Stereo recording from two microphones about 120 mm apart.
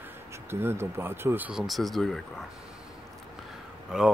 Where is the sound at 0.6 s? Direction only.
20° right (ahead or behind).